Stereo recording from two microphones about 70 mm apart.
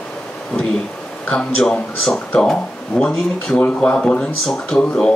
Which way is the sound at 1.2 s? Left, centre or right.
Centre.